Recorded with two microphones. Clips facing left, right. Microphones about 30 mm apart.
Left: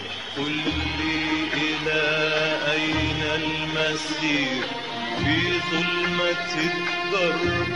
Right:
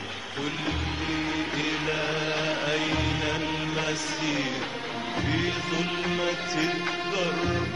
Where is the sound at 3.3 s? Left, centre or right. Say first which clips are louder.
Left 3 dB; left.